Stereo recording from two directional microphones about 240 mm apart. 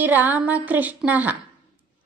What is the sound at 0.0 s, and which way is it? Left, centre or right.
Speech, centre.